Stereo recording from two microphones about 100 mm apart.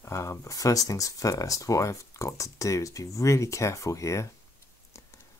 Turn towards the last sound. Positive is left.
turn(degrees=30)  # may be behind; listen again after turning